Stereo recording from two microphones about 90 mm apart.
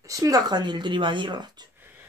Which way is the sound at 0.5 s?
55° right (ahead or behind).